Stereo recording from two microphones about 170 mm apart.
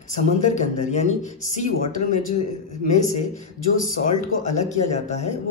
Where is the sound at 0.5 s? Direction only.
45° left (ahead or behind).